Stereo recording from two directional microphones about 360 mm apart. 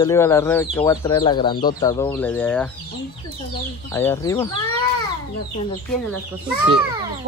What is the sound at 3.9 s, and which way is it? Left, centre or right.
Speech, centre.